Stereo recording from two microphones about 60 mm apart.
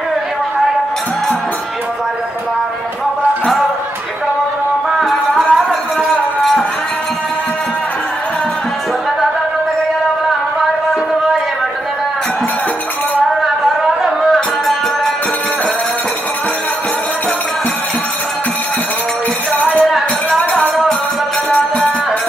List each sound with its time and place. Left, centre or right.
5.0 s music: centre
14.0 s music: centre
19.5 s music: left
20.2 s music: centre